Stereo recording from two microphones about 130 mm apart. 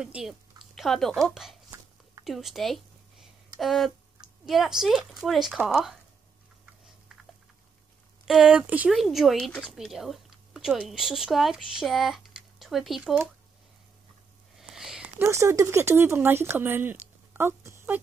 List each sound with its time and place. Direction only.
0.0 s speech: 5° right (ahead or behind)
8.3 s speech: 5° right (ahead or behind)
14.6 s a sound: 5° right (ahead or behind)
15.1 s speech: 20° right (ahead or behind)